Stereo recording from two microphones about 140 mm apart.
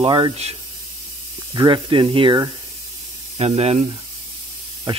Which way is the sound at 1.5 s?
30° right (ahead or behind).